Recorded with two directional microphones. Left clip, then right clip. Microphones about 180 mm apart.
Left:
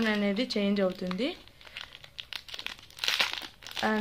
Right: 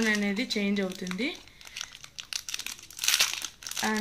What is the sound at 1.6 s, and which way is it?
Crumpling, 20° left (ahead or behind).